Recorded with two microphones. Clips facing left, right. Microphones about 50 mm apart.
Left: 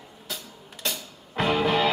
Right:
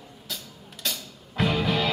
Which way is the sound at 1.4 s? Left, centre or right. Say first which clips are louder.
Left 2 dB; centre.